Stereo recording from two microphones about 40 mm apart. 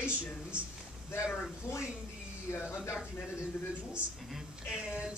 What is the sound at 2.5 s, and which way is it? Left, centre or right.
Speech, left.